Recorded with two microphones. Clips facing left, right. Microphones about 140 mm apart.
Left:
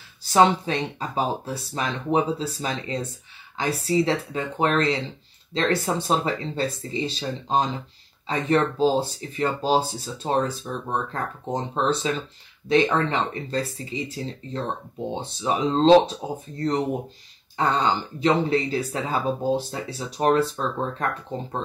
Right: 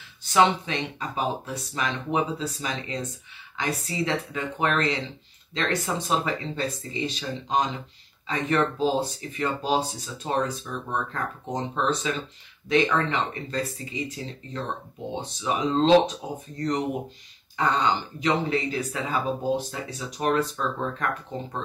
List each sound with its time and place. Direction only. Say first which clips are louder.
0.2 s speech: left 3 dB; 35° left (ahead or behind)